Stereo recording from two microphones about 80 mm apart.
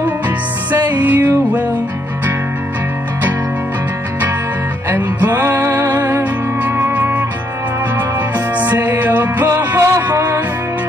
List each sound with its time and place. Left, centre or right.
0.7 s music: right
4.8 s music: right
8.5 s music: right
9.8 s a sound: right